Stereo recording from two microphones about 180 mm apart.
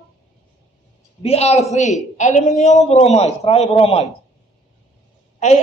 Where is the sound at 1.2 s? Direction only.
35° left (ahead or behind).